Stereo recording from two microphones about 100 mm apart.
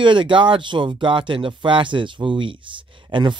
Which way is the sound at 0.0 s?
55° right (ahead or behind).